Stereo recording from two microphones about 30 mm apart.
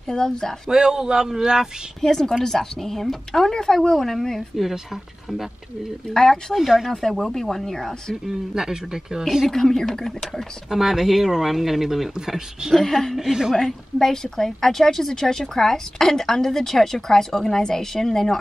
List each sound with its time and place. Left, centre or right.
0.1 s speech: centre
0.7 s a man's voice: right
2.0 s a woman's voice: centre
3.5 s a woman's voice: left
6.0 s speech: left
6.5 s speech: centre
6.9 s a woman's voice: centre
8.3 s speech: centre
9.5 s a woman's voice: centre
10.7 s speech: centre
12.7 s a woman's voice: centre
13.2 s speech: centre
13.6 s a woman's voice: centre